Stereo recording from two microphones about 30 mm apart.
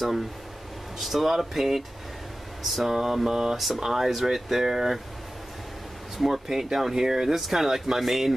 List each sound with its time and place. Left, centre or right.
0.9 s speech: centre
2.9 s speech: centre
3.3 s mantra: centre
3.5 s speech: centre
6.1 s speech: centre